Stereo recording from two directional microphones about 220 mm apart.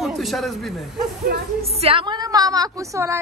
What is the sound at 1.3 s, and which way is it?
Speech, 45° right (ahead or behind).